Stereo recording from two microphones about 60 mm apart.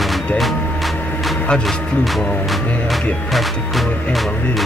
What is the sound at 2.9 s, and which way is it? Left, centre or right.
Speech, centre.